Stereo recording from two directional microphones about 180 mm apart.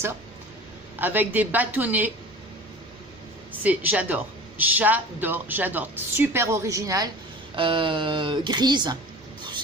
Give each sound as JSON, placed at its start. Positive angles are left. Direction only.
{"t": 0.9, "sound": "a man's voice", "side_deg": -10}
{"t": 3.6, "sound": "a man's voice", "side_deg": -10}
{"t": 7.5, "sound": "speech", "side_deg": -30}